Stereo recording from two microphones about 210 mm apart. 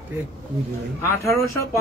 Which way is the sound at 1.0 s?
15° left (ahead or behind).